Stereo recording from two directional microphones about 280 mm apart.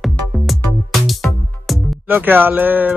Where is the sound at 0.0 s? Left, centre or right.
Centre.